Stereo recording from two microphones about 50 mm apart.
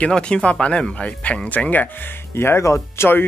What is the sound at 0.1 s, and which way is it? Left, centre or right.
Speech, left.